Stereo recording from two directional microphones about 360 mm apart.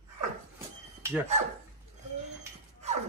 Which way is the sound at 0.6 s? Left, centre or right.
Centre.